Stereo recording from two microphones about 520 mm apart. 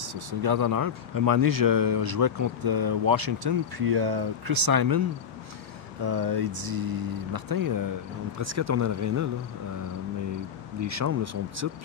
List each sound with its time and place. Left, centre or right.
0.1 s speech: right
6.0 s speech: right
10.8 s speech: right